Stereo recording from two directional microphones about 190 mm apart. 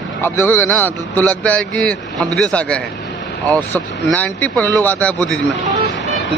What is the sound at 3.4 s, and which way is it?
Speech, 10° left (ahead or behind).